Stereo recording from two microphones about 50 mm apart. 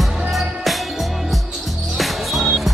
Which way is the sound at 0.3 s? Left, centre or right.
Centre.